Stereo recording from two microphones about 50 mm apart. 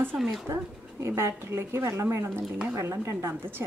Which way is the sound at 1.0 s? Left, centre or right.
Right.